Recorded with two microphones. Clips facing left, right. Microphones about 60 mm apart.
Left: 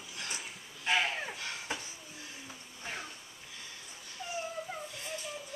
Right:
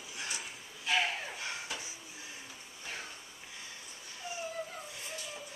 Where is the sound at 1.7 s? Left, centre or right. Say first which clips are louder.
Left 3 dB; left.